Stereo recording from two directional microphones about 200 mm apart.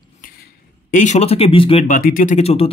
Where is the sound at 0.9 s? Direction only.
35° left (ahead or behind).